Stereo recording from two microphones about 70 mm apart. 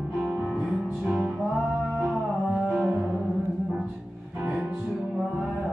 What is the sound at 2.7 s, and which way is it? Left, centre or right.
Music, centre.